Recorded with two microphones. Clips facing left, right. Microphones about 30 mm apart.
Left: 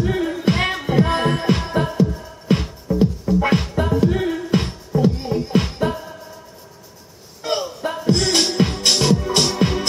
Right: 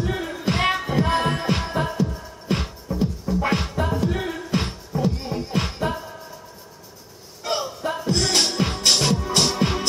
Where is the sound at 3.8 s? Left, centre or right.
Centre.